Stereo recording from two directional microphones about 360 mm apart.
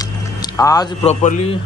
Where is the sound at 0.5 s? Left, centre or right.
Centre.